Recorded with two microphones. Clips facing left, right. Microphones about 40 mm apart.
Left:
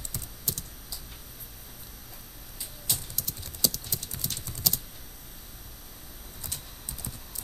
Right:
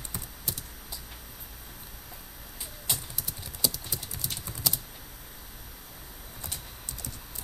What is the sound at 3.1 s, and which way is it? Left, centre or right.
Typing, centre.